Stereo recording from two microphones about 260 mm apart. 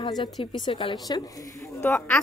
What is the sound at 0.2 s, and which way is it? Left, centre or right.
A woman's voice, centre.